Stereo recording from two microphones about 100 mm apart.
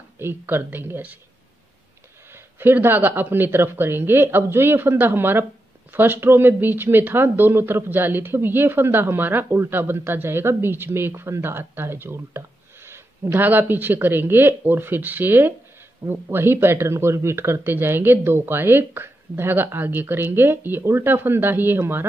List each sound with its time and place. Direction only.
0.2 s speech: 25° right (ahead or behind)
2.3 s speech: 20° right (ahead or behind)